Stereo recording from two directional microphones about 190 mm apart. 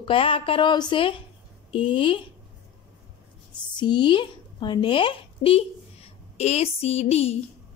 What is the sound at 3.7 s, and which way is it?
A woman's voice, 25° left (ahead or behind).